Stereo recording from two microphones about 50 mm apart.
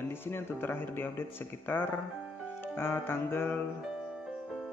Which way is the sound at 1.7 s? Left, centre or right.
Left.